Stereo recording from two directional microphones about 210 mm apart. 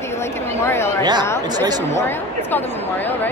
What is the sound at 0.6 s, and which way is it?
Speech, 10° left (ahead or behind).